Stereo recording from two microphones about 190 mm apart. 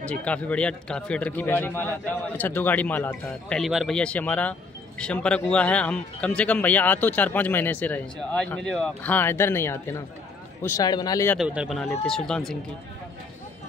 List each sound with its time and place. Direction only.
0.0 s speech: 5° left (ahead or behind)
11.3 s speech: 5° right (ahead or behind)
11.8 s speech: 10° left (ahead or behind)